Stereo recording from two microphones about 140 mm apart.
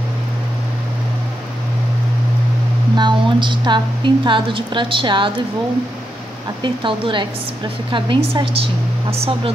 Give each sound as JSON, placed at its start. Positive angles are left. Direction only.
{"t": 3.0, "sound": "a woman's voice", "side_deg": -35}
{"t": 6.6, "sound": "a woman's voice", "side_deg": -35}